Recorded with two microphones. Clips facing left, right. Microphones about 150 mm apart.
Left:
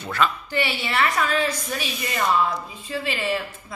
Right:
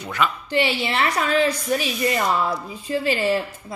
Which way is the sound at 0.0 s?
15° right (ahead or behind).